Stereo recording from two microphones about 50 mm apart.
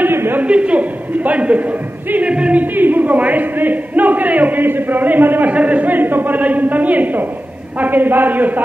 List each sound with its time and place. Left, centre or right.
0.0 s a sound: right
0.4 s a woman's voice: right
2.6 s a man's voice: right